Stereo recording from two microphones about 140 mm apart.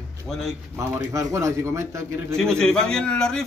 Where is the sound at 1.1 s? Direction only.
20° right (ahead or behind).